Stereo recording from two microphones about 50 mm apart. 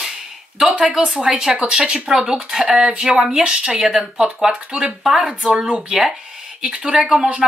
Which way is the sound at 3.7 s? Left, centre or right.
Centre.